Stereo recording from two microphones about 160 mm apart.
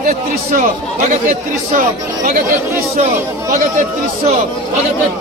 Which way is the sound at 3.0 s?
55° right (ahead or behind).